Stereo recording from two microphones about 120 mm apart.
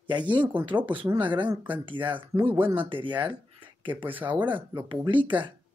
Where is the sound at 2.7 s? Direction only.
45° right (ahead or behind).